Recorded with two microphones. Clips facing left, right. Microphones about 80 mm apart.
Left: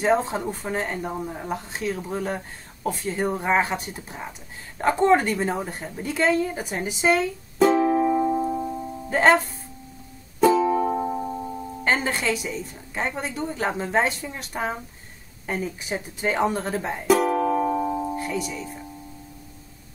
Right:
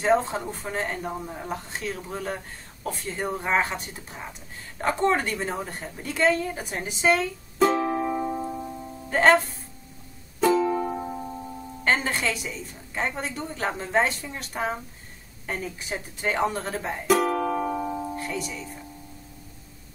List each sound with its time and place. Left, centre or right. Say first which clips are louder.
0.0 s a woman's voice: left 1 dB; centre
10.4 s music: left 3 dB; centre
11.8 s speech: left 1 dB; centre